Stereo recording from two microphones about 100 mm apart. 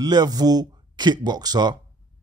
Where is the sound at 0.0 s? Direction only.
45° right (ahead or behind).